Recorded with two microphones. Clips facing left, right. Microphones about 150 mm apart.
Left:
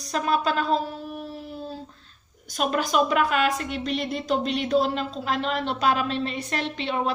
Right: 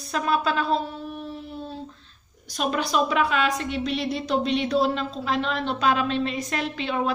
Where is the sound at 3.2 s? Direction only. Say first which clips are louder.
Left 1 dB; 45° left (ahead or behind).